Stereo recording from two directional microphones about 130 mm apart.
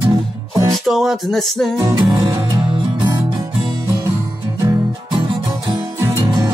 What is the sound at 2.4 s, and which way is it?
Music, 40° right (ahead or behind).